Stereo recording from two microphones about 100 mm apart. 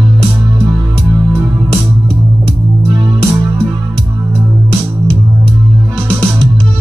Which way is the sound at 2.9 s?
50° right (ahead or behind).